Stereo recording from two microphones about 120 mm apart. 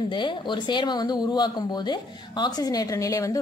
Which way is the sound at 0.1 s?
40° left (ahead or behind).